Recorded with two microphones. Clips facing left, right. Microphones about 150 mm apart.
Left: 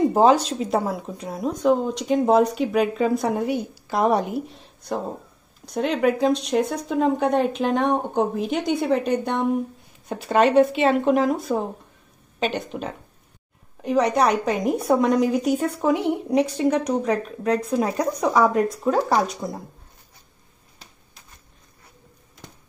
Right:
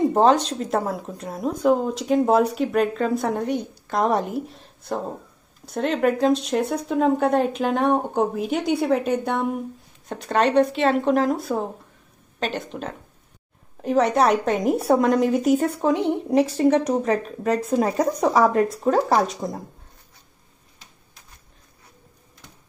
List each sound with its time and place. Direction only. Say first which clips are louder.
0.0 s speech: left 1 dB; 5° left (ahead or behind)
15.8 s speech: even; 10° left (ahead or behind)
16.3 s speech: right 3 dB; centre (ahead or behind)
19.4 s speech: right 1 dB; 20° right (ahead or behind)